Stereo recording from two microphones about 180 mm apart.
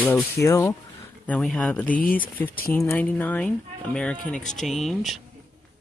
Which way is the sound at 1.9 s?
50° left (ahead or behind).